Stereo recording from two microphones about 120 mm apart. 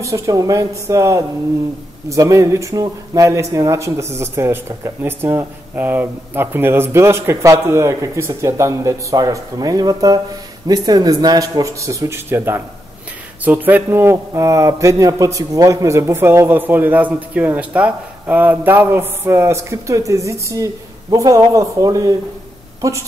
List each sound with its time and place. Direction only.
0.0 s speech: 25° right (ahead or behind)